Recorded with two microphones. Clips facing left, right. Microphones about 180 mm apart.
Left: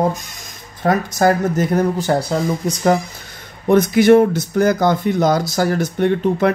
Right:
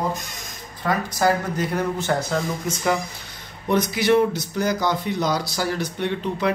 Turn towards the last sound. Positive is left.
turn(degrees=50)  # may be behind; listen again after turning